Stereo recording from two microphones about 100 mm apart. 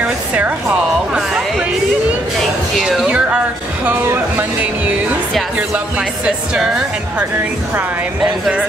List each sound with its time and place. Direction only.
0.0 s music: 15° right (ahead or behind)
2.8 s speech: centre (ahead or behind)
3.1 s a sound: 10° right (ahead or behind)
3.8 s speech: 20° right (ahead or behind)
5.9 s speech: 10° right (ahead or behind)